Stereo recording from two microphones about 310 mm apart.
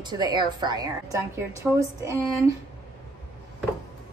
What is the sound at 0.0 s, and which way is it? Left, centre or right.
A woman's voice, centre.